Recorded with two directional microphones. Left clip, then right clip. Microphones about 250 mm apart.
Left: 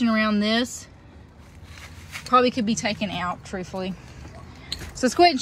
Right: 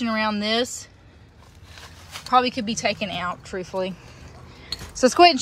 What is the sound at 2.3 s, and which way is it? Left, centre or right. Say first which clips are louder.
Speech: left 1 dB; centre.